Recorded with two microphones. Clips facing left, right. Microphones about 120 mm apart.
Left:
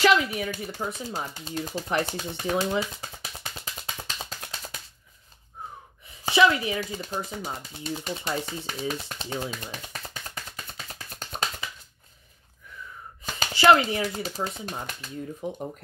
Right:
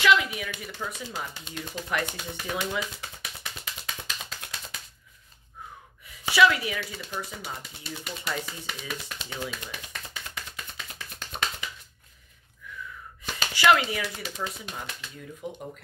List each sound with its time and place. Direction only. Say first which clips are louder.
0.0 s speech: left 2 dB; 40° left (ahead or behind)
1.3 s typewriter: left 5 dB; 35° left (ahead or behind)
6.0 s a sound: left 1 dB; 25° left (ahead or behind)
6.8 s speech: left 4 dB; 40° left (ahead or behind)
7.8 s a sound: left 6 dB; 25° left (ahead or behind)
13.6 s speech: left 3 dB; 30° left (ahead or behind)